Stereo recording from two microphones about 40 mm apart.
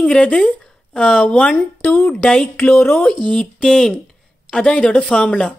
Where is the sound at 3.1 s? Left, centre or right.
Left.